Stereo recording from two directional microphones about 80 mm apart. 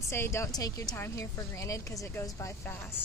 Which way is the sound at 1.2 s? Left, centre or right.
Left.